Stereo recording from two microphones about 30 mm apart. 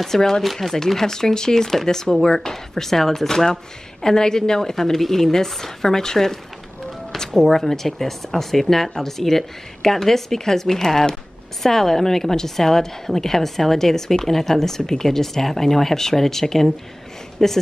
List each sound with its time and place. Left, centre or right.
0.0 s speech: centre
7.5 s speech: centre